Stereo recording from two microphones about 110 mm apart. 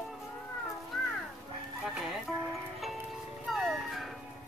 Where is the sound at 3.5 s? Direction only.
Centre (ahead or behind).